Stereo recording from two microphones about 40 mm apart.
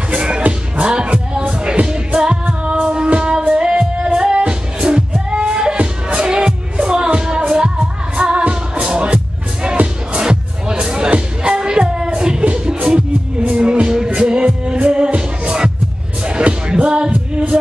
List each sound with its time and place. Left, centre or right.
0.1 s music: right
5.8 s music: right
6.2 s music: right